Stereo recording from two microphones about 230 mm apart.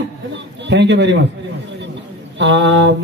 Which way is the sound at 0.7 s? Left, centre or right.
Right.